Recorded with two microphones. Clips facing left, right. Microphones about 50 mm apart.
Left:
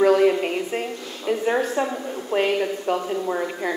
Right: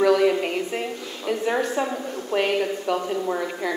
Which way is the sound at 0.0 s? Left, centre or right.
Centre.